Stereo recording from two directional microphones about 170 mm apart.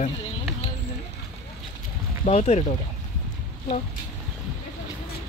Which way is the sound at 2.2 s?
40° left (ahead or behind).